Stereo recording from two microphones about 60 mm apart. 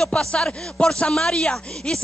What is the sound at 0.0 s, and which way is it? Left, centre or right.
Speech, centre.